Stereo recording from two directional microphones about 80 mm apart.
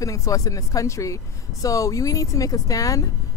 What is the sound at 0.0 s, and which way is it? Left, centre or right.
Speech, left.